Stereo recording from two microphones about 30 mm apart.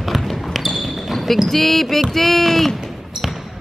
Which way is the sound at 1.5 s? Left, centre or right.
Centre.